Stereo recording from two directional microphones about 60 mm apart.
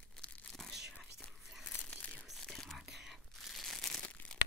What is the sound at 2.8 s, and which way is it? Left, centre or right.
Crumpling, centre.